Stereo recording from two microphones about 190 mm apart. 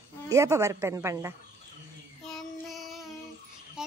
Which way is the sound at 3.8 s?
5° right (ahead or behind).